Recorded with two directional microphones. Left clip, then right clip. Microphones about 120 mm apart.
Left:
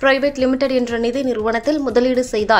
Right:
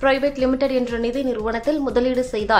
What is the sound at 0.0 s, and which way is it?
A woman's voice, 25° left (ahead or behind).